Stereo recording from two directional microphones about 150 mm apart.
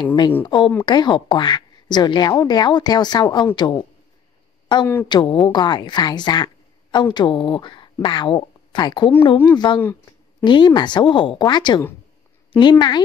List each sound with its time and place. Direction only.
0.0 s a woman's voice: 30° left (ahead or behind)